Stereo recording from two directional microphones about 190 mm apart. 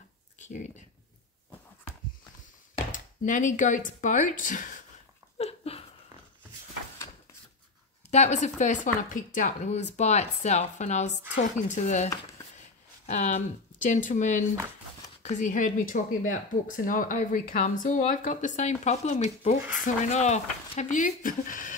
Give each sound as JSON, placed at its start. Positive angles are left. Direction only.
{"t": 0.4, "sound": "speech", "side_deg": 40}
{"t": 2.9, "sound": "speech", "side_deg": 40}
{"t": 5.4, "sound": "a sound", "side_deg": 30}
{"t": 8.1, "sound": "speech", "side_deg": 35}
{"t": 12.5, "sound": "a sound", "side_deg": 40}
{"t": 15.2, "sound": "speech", "side_deg": 40}